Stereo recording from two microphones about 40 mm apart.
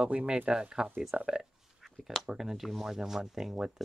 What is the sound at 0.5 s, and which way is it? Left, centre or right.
Speech, centre.